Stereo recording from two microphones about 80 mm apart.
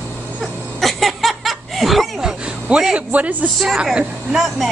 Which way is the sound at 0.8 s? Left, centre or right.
Centre.